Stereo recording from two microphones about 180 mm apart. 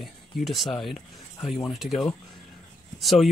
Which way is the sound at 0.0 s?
Centre (ahead or behind).